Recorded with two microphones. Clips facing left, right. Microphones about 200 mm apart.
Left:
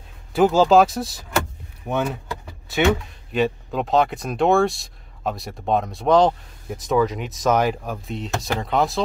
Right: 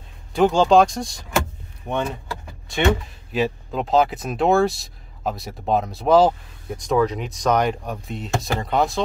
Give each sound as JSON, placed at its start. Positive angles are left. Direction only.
{"t": 0.3, "sound": "speech", "side_deg": 5}